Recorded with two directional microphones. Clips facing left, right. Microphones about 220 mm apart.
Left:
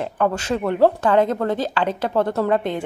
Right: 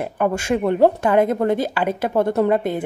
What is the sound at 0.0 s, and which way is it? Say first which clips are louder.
A woman's voice: right 1 dB; 10° right (ahead or behind).